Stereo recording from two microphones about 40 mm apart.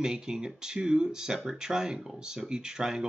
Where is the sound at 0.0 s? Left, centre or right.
Centre.